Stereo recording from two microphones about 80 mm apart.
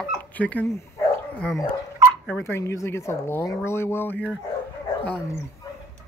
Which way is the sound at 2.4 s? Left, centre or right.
Left.